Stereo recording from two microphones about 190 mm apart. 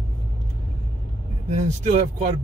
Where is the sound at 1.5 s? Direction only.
35° right (ahead or behind).